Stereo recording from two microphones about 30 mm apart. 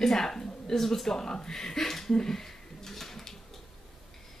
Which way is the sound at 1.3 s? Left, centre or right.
Centre.